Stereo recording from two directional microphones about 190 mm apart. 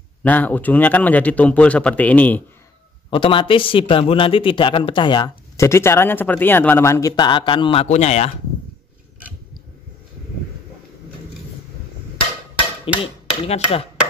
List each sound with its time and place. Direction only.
0.2 s a man's voice: 10° left (ahead or behind)
3.1 s a man's voice: 25° left (ahead or behind)
13.0 s chopping: 30° left (ahead or behind)